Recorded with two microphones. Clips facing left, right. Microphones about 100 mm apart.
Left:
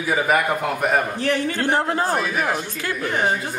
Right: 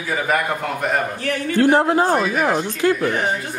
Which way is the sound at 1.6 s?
20° right (ahead or behind).